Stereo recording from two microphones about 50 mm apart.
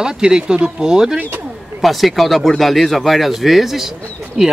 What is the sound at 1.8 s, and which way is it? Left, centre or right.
Speech, centre.